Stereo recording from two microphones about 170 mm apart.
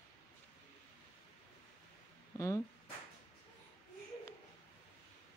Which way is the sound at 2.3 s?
20° left (ahead or behind).